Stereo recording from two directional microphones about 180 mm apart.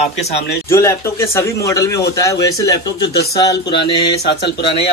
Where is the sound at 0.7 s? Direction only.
15° left (ahead or behind).